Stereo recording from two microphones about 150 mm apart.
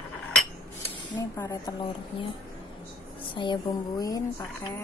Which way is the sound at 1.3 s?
20° left (ahead or behind).